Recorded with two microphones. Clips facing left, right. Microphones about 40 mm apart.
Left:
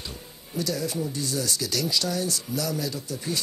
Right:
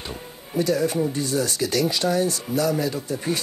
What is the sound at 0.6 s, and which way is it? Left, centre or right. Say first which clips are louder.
Speech: right 7 dB; right.